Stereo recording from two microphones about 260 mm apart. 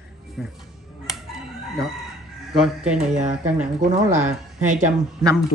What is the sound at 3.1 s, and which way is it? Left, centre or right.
Speech, right.